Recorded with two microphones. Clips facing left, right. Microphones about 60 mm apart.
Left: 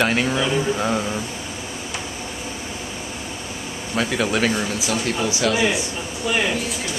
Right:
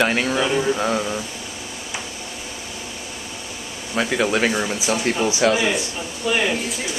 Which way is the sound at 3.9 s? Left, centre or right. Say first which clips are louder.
Right 1 dB; centre.